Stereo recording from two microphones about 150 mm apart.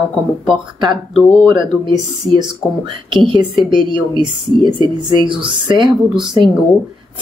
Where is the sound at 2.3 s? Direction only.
30° right (ahead or behind).